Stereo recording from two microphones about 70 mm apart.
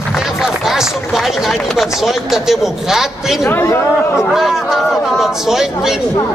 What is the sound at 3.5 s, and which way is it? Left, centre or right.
Speech, left.